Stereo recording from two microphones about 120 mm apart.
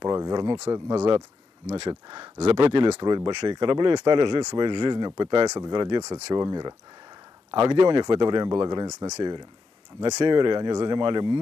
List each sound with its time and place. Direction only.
0.0 s speech: 35° right (ahead or behind)
2.3 s speech: 55° right (ahead or behind)
3.0 s speech: 35° right (ahead or behind)
7.5 s speech: 50° right (ahead or behind)